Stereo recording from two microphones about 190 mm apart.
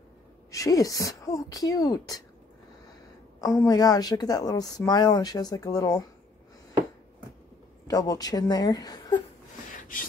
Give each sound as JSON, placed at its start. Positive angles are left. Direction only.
{"t": 0.5, "sound": "speech", "side_deg": 15}
{"t": 3.3, "sound": "a woman's voice", "side_deg": 20}
{"t": 7.8, "sound": "a woman's voice", "side_deg": 20}
{"t": 9.8, "sound": "beatboxing", "side_deg": 45}